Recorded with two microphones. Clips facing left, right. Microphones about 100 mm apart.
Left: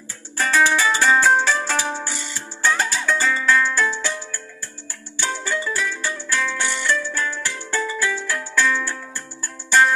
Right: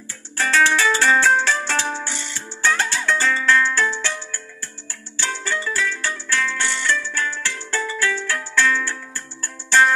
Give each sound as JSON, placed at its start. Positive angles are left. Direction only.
{"t": 0.4, "sound": "music", "side_deg": 10}